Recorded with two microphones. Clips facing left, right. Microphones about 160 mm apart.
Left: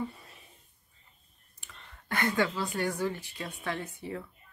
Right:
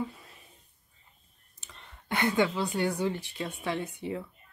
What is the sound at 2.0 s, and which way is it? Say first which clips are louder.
A woman's voice: right 2 dB; 20° right (ahead or behind).